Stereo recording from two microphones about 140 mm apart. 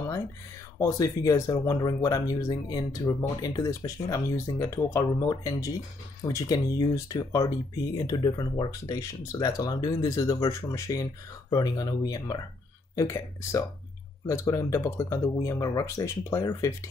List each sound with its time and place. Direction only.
0.7 s speech: 20° left (ahead or behind)